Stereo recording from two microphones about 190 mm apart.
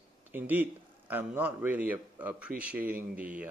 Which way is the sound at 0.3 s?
10° right (ahead or behind).